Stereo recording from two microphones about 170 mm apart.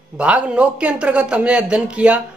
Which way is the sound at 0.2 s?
5° right (ahead or behind).